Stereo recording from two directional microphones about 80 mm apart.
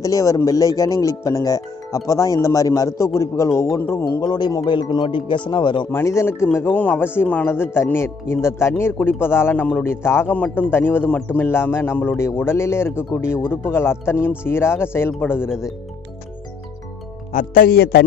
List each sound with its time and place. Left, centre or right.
0.0 s speech: left
4.2 s speech: left
5.5 s speech: left
5.9 s speech: left
10.3 s speech: centre
15.4 s speech: centre